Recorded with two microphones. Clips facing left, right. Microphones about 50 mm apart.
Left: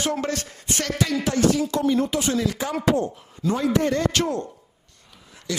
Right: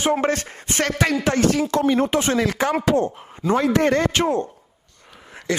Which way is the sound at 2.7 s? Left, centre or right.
Right.